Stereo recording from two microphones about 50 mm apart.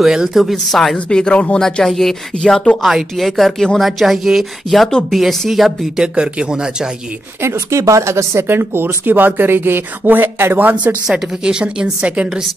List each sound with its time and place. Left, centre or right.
0.0 s speech: centre
0.4 s speech: centre
1.1 s speech: centre
1.6 s speech: centre
2.8 s speech: centre
4.0 s speech: centre
6.1 s a woman's voice: centre
7.4 s speech: right
8.5 s speech: right
11.1 s a woman's voice: centre